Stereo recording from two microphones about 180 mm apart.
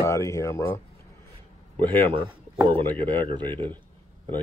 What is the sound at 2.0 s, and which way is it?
Speech, 30° right (ahead or behind).